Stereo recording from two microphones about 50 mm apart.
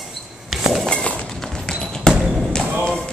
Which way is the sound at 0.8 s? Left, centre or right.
Left.